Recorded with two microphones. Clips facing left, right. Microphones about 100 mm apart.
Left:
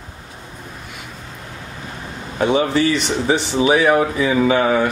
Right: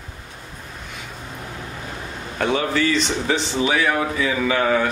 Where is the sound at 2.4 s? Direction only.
20° left (ahead or behind).